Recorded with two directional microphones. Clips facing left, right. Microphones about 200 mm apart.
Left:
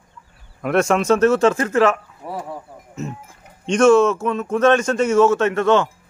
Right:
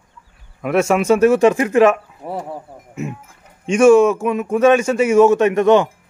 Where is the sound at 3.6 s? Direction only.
10° right (ahead or behind).